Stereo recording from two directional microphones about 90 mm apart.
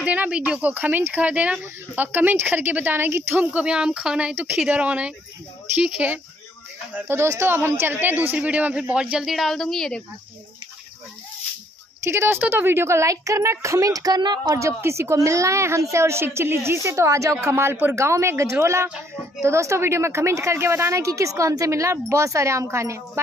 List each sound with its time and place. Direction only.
0.0 s speech: 15° right (ahead or behind)
3.5 s speech: 10° right (ahead or behind)
9.3 s speech: centre (ahead or behind)
12.0 s a woman's voice: 30° right (ahead or behind)